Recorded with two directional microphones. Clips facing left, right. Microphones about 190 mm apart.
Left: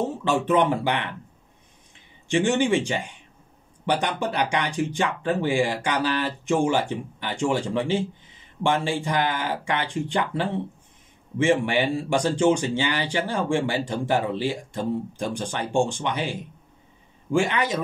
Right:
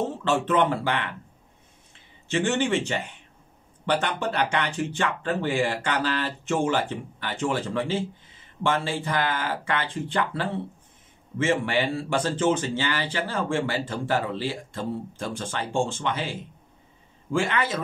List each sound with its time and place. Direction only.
0.2 s a man's voice: 15° left (ahead or behind)
2.2 s a man's voice: 15° left (ahead or behind)